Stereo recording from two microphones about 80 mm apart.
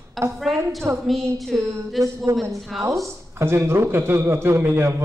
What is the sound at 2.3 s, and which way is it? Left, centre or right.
Speech, right.